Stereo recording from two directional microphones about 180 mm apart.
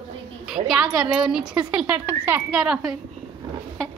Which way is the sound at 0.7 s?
5° right (ahead or behind).